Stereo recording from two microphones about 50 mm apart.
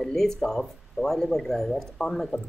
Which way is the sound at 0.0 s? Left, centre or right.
Centre.